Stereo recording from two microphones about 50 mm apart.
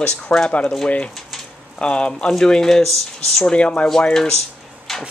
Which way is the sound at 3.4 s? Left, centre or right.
Left.